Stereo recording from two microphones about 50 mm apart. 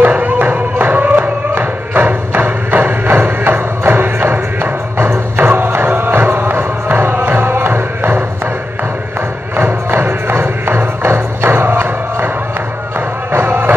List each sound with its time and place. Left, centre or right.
0.0 s a sound: right
1.6 s music: right
9.6 s music: right
13.3 s music: right